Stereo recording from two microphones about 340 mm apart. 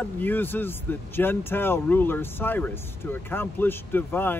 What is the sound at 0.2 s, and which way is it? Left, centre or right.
Speech, centre.